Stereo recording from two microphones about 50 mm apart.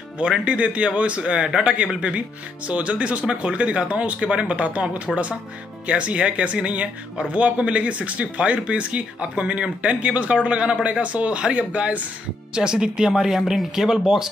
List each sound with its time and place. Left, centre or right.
0.2 s speech: right
12.5 s speech: centre